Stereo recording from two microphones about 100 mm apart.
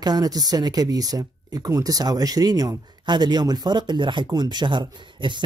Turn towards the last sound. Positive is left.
turn(degrees=-50)  # may be behind; listen again after turning